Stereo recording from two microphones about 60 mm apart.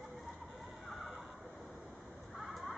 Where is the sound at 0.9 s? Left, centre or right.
Centre.